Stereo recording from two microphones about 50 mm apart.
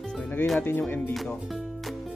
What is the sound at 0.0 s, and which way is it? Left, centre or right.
Music, centre.